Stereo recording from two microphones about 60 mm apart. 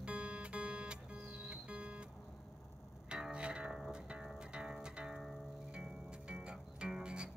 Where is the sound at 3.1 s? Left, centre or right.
Centre.